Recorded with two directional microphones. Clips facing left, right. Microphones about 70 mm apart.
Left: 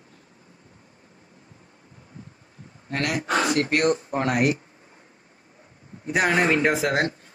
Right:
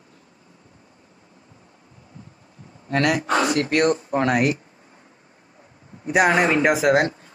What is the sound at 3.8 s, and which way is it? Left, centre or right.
Speech, right.